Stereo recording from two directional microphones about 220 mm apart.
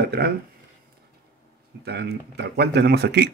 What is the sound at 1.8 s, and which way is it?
Speech, 50° right (ahead or behind).